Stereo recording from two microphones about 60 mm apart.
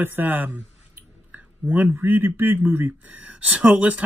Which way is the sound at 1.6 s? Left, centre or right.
Right.